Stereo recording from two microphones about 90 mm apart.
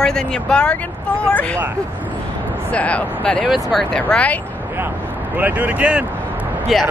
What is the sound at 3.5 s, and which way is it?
Speech, 5° left (ahead or behind).